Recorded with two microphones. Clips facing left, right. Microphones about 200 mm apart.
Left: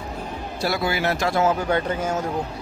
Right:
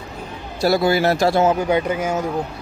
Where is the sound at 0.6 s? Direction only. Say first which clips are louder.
Right 8 dB; 40° right (ahead or behind).